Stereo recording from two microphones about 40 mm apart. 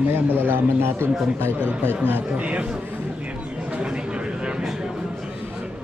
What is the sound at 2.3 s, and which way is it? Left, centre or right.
Speech, right.